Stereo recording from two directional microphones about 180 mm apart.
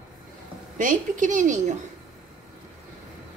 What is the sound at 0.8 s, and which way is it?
Speech, 45° right (ahead or behind).